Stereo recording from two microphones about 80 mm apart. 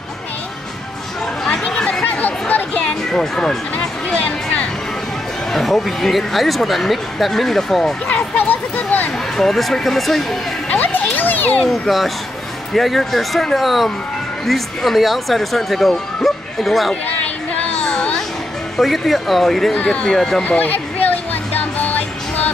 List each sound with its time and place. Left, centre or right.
1.4 s chatter: centre
2.0 s music: centre
3.7 s a sound: centre
5.5 s speech: centre
8.2 s a sound: left
9.4 s speech: centre
10.7 s children playing: left
11.7 s speech: centre
15.9 s bow-wow: centre
17.2 s a sound: centre
18.8 s speech: centre
19.7 s speech: centre
20.2 s speech: centre
20.4 s music: left